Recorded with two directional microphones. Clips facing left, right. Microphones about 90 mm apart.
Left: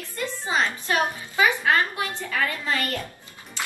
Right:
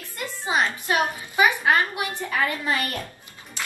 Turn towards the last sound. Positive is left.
turn(degrees=-15)  # may be behind; listen again after turning